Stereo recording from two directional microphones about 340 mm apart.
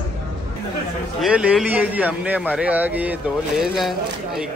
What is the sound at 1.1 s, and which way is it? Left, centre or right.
A man's voice, centre.